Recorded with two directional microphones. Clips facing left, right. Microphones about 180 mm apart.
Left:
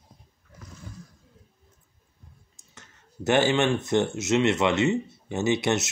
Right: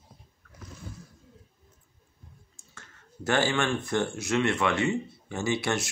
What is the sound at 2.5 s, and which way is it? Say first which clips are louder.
Speech: left 1 dB; 20° left (ahead or behind).